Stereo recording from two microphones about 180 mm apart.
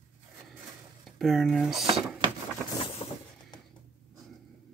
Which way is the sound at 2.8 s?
30° left (ahead or behind).